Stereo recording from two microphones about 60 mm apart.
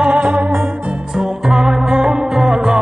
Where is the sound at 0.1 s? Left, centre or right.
Right.